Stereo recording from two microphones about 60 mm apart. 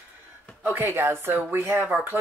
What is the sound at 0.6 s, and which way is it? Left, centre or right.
Speech, right.